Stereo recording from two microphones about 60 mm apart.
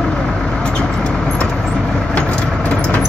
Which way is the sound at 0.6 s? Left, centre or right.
Centre.